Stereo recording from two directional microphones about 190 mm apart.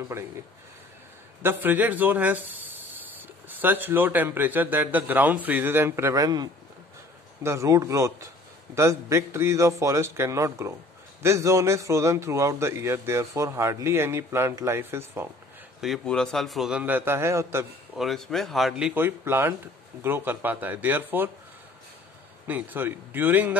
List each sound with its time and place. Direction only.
1.4 s a man's voice: 10° right (ahead or behind)
15.8 s a man's voice: centre (ahead or behind); by 17.6 s 15° right (ahead or behind)
17.9 s a man's voice: centre (ahead or behind)
22.5 s a man's voice: 10° right (ahead or behind)